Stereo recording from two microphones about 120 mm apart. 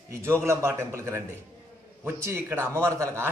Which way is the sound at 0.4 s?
20° right (ahead or behind).